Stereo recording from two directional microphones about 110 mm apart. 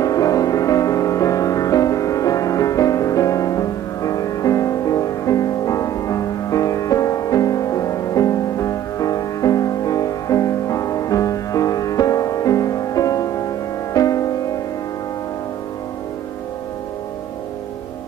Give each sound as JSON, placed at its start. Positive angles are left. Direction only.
{"t": 0.0, "sound": "music", "side_deg": 35}